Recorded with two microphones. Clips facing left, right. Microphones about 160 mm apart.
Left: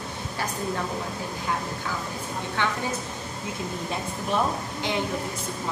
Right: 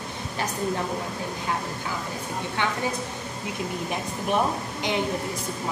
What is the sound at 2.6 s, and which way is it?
Speech, 15° right (ahead or behind).